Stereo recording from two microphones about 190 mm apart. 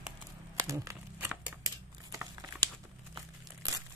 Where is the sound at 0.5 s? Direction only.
15° right (ahead or behind).